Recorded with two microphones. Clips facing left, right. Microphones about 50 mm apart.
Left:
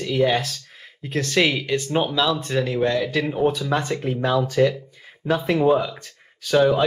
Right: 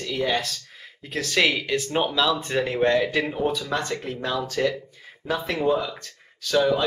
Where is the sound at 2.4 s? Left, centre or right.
Centre.